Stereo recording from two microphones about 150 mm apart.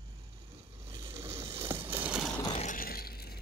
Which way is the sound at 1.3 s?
40° right (ahead or behind).